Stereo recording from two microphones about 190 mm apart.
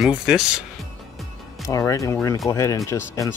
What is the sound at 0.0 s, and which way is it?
Speech, 5° right (ahead or behind).